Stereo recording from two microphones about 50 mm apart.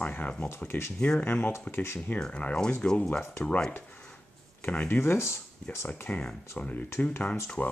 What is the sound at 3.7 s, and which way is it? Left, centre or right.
Speech, left.